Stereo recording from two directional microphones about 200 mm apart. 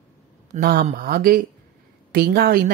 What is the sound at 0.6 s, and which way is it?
Speech, 50° right (ahead or behind).